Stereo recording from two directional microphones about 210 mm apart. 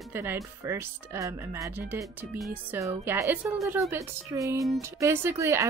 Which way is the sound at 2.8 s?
15° right (ahead or behind).